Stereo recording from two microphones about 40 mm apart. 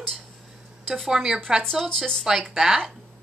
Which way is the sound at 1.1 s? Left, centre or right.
Centre.